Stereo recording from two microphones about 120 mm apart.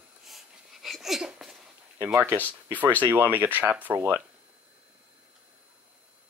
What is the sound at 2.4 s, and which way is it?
Speech, 15° right (ahead or behind).